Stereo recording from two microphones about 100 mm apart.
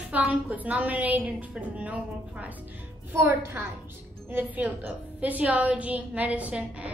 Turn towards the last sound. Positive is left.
turn(degrees=-10)  # may be behind; listen again after turning